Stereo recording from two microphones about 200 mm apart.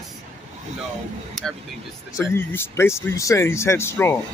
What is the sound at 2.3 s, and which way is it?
Speech, 10° left (ahead or behind).